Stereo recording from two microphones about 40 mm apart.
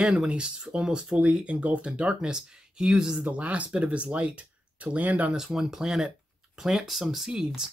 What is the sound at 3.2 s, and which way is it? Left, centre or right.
Speech, right.